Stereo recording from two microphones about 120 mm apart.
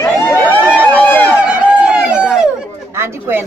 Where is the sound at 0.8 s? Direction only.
15° left (ahead or behind).